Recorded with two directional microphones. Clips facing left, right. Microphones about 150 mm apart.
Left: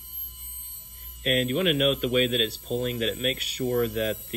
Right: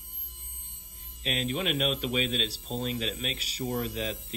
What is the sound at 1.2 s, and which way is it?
Speech, 55° left (ahead or behind).